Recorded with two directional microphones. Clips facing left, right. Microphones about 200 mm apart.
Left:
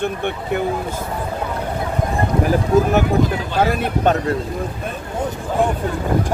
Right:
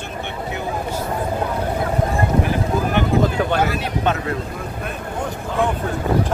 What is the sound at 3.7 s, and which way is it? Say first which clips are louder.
Speech: left 4 dB; 40° left (ahead or behind).